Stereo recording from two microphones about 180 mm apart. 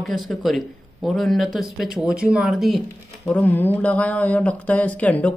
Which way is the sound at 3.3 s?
10° left (ahead or behind).